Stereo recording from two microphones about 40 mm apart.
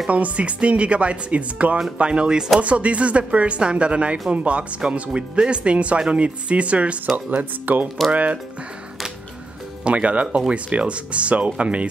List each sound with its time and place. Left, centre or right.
0.1 s speech: right
2.6 s speech: right
9.8 s speech: right